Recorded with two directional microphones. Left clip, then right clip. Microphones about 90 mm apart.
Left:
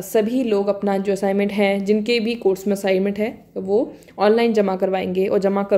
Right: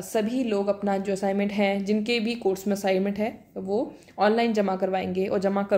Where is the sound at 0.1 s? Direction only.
35° left (ahead or behind).